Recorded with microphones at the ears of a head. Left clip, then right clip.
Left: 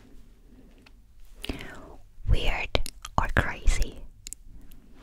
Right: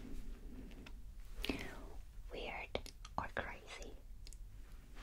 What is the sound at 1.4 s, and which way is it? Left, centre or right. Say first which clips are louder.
Whispering: left 6 dB; left.